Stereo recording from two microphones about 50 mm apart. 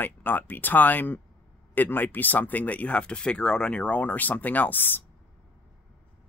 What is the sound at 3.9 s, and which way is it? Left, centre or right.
Speech, left.